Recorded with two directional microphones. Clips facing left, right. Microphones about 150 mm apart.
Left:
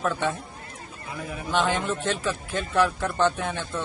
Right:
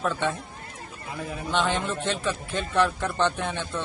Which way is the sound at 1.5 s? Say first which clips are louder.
Left 1 dB; 10° left (ahead or behind).